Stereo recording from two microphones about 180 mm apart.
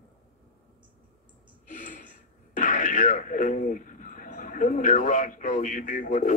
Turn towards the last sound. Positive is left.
turn(degrees=45)  # may be behind; listen again after turning